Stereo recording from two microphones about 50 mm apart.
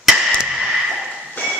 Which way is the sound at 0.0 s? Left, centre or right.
Centre.